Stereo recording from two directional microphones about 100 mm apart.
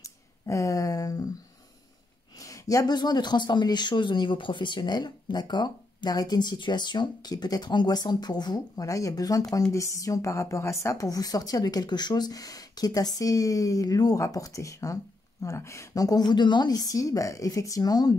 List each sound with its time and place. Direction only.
0.0 s speech: 35° left (ahead or behind)
2.4 s speech: 35° left (ahead or behind)